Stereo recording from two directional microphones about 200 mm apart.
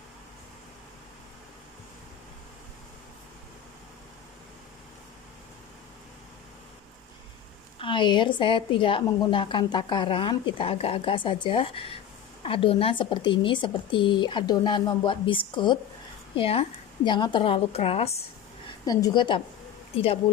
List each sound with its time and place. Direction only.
7.8 s a woman's voice: 25° left (ahead or behind)
18.9 s a woman's voice: 20° left (ahead or behind)